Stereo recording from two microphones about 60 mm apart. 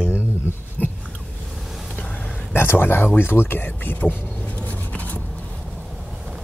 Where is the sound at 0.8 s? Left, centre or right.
Left.